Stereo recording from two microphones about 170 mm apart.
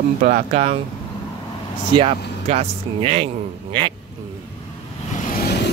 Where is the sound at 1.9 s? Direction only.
35° right (ahead or behind).